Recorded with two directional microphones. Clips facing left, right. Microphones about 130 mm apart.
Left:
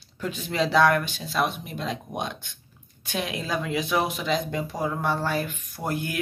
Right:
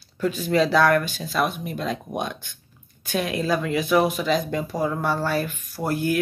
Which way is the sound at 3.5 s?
20° left (ahead or behind).